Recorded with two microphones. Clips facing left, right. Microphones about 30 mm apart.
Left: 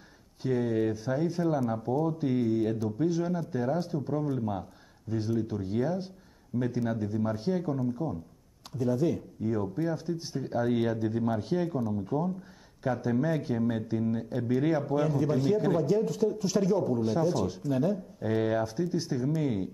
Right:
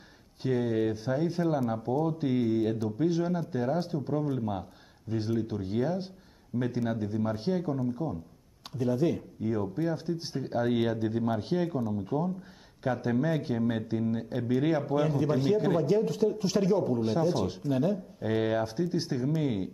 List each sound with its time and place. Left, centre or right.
0.4 s speech: centre
2.6 s speech: centre
3.0 s speech: right
4.1 s speech: centre
7.5 s speech: centre
8.7 s speech: right
9.6 s speech: centre
9.9 s speech: right